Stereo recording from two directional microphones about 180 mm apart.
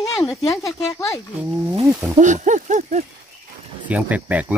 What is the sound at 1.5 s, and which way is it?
Speech, 20° right (ahead or behind).